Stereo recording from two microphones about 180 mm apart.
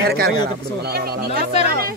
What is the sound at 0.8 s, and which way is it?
Speech, 60° right (ahead or behind).